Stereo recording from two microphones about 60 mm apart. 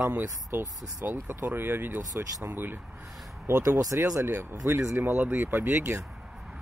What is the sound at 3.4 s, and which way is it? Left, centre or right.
Speech, right.